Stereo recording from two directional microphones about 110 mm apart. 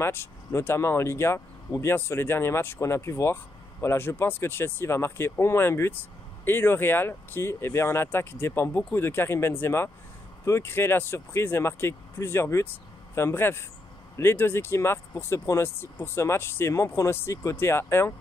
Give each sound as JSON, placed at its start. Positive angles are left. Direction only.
{"t": 0.0, "sound": "speech", "side_deg": 20}